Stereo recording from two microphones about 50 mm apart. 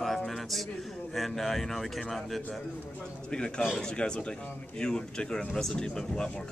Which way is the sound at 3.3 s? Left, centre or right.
Centre.